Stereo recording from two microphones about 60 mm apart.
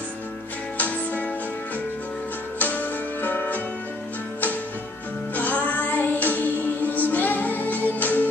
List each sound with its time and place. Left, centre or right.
0.7 s music: left
2.6 s music: left
5.3 s music: left